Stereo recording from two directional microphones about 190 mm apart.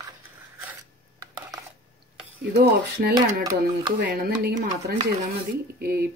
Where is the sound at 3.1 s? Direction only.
20° right (ahead or behind).